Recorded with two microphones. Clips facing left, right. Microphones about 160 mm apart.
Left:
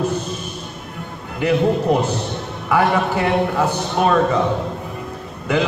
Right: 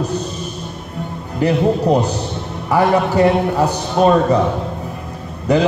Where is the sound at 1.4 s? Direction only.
40° right (ahead or behind).